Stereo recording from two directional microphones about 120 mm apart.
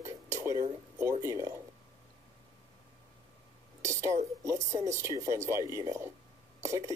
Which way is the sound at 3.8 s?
25° right (ahead or behind).